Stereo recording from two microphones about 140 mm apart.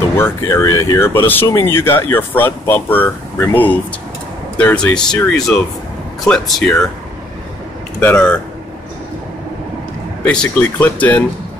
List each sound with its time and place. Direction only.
0.2 s speech: 20° left (ahead or behind); by 6.8 s centre (ahead or behind)
8.0 s speech: 10° left (ahead or behind)
10.2 s speech: 10° left (ahead or behind)